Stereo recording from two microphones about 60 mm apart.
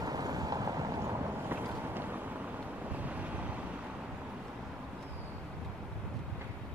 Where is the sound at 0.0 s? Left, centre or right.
Right.